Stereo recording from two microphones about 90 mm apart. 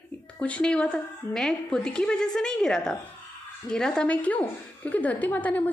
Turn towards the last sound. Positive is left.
turn(degrees=20)  # may be behind; listen again after turning